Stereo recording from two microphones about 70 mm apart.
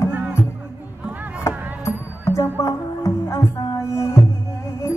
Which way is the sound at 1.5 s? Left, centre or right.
Right.